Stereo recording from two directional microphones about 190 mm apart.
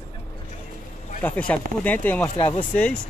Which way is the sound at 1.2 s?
5° left (ahead or behind).